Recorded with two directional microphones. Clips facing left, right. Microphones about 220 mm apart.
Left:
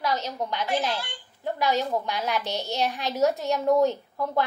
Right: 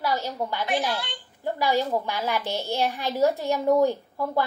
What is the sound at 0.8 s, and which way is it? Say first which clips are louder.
A child's voice: right 1 dB; 10° right (ahead or behind).